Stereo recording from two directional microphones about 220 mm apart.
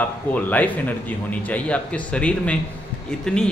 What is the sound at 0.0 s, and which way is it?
A man's voice, 5° left (ahead or behind).